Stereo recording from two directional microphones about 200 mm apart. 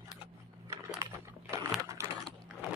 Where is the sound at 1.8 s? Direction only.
15° right (ahead or behind).